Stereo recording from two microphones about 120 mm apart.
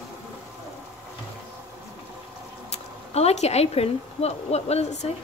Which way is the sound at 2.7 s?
60° left (ahead or behind).